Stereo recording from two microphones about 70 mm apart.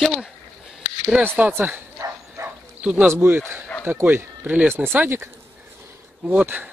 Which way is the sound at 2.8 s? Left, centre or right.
Centre.